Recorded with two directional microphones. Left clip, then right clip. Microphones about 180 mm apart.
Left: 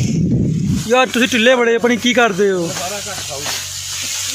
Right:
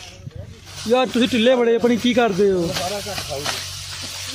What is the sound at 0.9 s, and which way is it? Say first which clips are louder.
Speech: left 4 dB; centre (ahead or behind).